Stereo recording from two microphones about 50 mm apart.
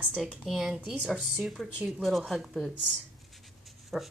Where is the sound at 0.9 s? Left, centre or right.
Right.